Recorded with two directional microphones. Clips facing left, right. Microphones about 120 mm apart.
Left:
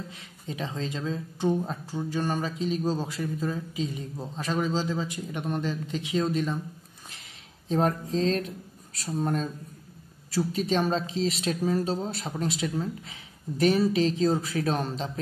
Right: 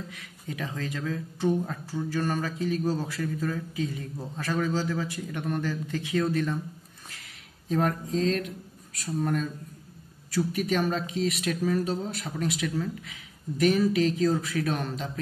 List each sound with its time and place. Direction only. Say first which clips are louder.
0.1 s speech: even; 25° left (ahead or behind)
7.1 s a sound: even; 25° left (ahead or behind)
10.3 s speech: left 1 dB; 25° left (ahead or behind)